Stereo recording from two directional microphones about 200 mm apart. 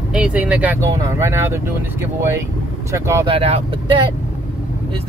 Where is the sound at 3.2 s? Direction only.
30° right (ahead or behind).